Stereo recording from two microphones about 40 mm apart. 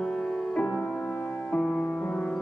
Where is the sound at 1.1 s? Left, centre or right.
Left.